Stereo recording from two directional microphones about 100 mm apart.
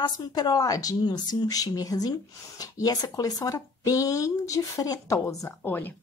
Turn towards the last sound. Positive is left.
turn(degrees=20)  # may be behind; listen again after turning